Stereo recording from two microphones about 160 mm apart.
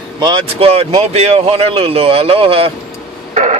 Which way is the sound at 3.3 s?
45° right (ahead or behind).